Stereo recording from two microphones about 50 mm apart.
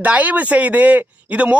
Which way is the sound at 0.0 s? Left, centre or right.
Right.